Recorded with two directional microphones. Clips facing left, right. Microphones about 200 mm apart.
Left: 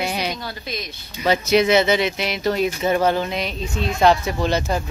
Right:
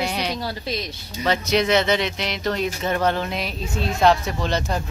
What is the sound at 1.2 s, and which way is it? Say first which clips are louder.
Speech: left 4 dB; 5° left (ahead or behind).